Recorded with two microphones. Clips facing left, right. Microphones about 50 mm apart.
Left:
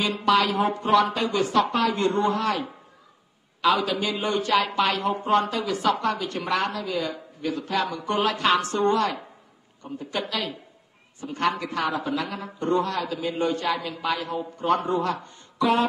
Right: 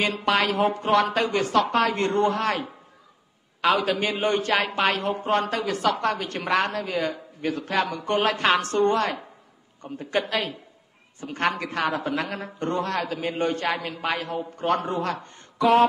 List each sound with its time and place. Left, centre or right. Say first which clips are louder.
0.0 s a woman's voice: left 1 dB; right
3.6 s a man's voice: even; right